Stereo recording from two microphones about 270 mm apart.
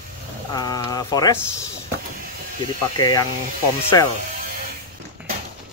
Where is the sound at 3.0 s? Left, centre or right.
Centre.